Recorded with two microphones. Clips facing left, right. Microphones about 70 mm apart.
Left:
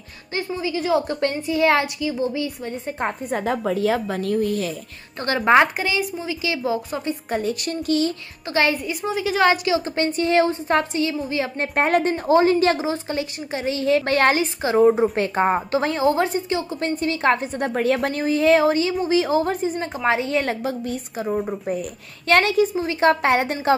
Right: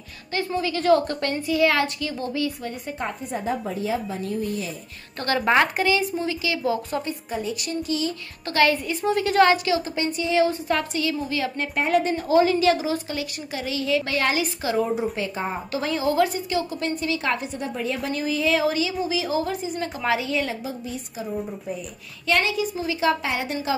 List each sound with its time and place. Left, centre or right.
0.5 s a woman's voice: centre
1.5 s a woman's voice: left
3.0 s a woman's voice: left
6.4 s a woman's voice: left
7.2 s a woman's voice: left
8.8 s a woman's voice: centre
9.4 s a woman's voice: left
9.9 s a woman's voice: left
10.5 s a woman's voice: left
11.6 s a woman's voice: left
14.4 s a woman's voice: left
14.8 s a woman's voice: left
15.7 s a woman's voice: left